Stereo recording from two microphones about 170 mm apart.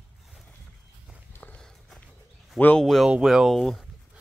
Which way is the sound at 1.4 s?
5° left (ahead or behind).